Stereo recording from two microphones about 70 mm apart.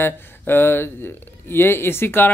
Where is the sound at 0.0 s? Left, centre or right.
Left.